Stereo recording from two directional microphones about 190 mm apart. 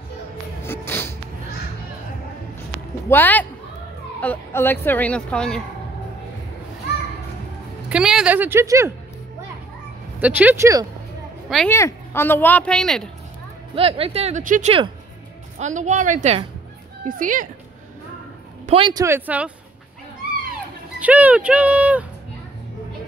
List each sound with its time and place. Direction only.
0.7 s a sound: 10° left (ahead or behind)
3.1 s speech: 10° left (ahead or behind)
7.9 s speech: 5° right (ahead or behind)
10.2 s speech: 10° right (ahead or behind)
11.4 s a woman's voice: centre (ahead or behind)
11.7 s speech: 15° left (ahead or behind)
13.7 s speech: 30° right (ahead or behind); by 17.5 s 45° right (ahead or behind)
18.7 s speech: 25° right (ahead or behind)
19.0 s speech: 10° right (ahead or behind)
21.0 s speech: 10° right (ahead or behind)